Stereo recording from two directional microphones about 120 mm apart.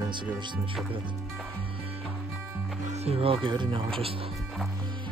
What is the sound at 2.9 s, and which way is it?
Speech, 60° right (ahead or behind).